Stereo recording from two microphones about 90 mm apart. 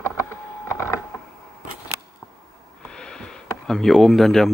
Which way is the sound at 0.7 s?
30° left (ahead or behind).